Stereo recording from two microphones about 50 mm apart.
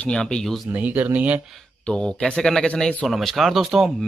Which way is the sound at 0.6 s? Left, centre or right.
Right.